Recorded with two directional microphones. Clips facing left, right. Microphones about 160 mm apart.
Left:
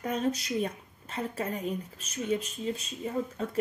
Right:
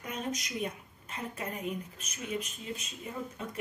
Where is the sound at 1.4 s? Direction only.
35° left (ahead or behind).